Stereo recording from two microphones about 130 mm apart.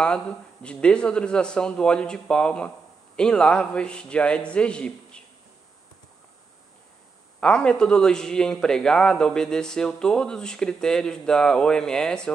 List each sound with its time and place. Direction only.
0.0 s speech: 5° left (ahead or behind)
7.3 s a man's voice: 5° left (ahead or behind)